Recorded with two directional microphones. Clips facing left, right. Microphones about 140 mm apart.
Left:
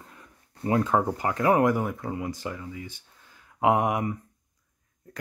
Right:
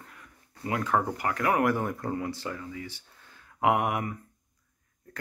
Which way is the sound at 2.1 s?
15° left (ahead or behind).